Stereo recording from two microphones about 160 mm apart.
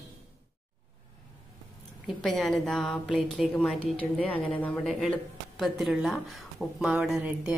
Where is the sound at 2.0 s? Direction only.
Centre (ahead or behind).